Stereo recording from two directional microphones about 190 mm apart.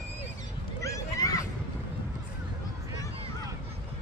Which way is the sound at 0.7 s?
15° left (ahead or behind).